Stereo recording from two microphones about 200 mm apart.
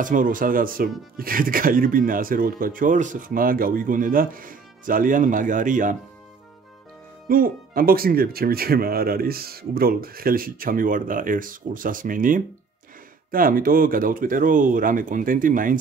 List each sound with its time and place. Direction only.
0.0 s speech: 40° right (ahead or behind)
7.2 s speech: 45° right (ahead or behind)